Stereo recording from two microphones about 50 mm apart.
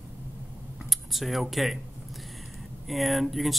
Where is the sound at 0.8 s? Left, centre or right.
Centre.